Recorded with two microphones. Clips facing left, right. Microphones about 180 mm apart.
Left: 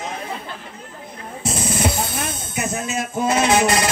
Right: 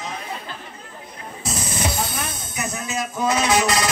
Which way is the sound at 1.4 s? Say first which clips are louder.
Left 5 dB; 25° left (ahead or behind).